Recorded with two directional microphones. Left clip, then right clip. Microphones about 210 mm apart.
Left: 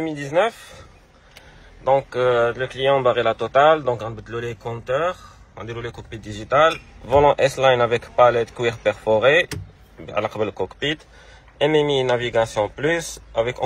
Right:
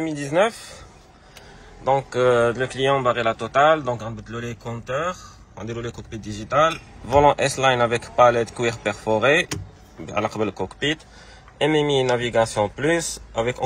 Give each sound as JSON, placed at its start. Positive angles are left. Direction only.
{"t": 0.0, "sound": "a man's voice", "side_deg": -15}
{"t": 1.9, "sound": "speech", "side_deg": -15}
{"t": 3.0, "sound": "a man's voice", "side_deg": -5}